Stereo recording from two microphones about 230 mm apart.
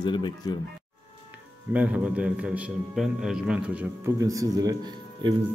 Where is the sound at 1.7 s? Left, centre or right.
Centre.